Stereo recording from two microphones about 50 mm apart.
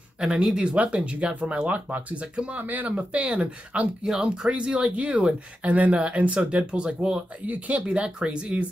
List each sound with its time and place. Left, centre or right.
0.2 s speech: centre
4.0 s speech: centre
7.4 s speech: right